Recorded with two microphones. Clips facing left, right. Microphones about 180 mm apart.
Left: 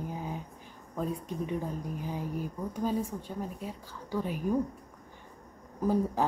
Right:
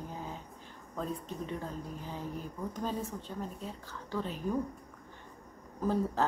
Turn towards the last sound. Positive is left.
turn(degrees=10)  # may be behind; listen again after turning